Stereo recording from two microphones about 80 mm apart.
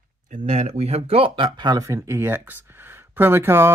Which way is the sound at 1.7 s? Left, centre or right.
Right.